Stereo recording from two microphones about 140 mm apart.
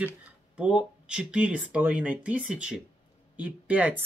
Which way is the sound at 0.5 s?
5° right (ahead or behind).